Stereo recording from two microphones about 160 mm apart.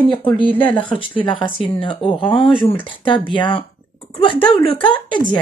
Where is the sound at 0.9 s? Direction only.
30° left (ahead or behind).